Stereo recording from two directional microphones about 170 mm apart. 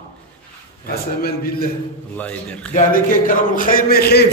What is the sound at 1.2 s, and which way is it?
Speech, 65° left (ahead or behind).